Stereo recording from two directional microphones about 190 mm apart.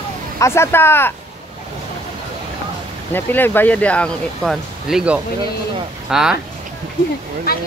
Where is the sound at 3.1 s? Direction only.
10° left (ahead or behind).